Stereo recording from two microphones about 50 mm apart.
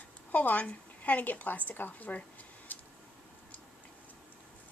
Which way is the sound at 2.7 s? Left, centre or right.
Left.